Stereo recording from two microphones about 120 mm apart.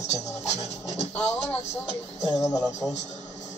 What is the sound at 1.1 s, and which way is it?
Speech, 10° left (ahead or behind).